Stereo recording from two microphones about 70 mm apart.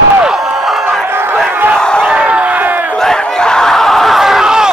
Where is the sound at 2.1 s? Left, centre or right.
Centre.